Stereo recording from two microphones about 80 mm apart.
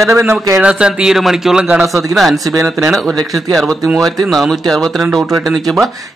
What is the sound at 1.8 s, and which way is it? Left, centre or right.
Speech, right.